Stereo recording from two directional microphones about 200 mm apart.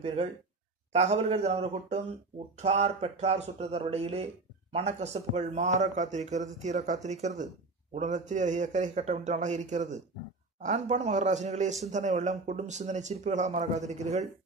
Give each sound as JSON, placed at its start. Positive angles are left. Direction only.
{"t": 0.0, "sound": "a man's voice", "side_deg": -30}